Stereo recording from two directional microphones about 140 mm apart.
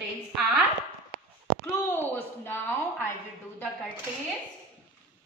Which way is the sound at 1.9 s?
15° left (ahead or behind).